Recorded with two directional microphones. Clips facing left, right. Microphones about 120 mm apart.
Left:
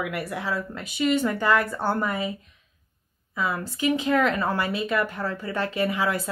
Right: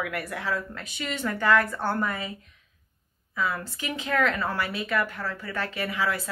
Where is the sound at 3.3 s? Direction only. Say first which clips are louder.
Left 2 dB; 15° left (ahead or behind).